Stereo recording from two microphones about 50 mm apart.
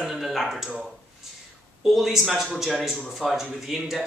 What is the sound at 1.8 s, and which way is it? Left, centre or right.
Speech, centre.